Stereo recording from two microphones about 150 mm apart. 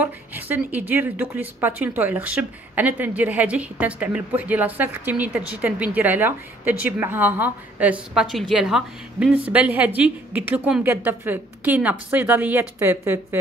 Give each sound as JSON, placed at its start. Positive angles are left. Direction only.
{"t": 0.0, "sound": "speech", "side_deg": -10}